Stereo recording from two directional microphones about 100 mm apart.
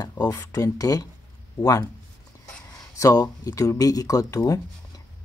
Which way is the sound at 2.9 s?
35° left (ahead or behind).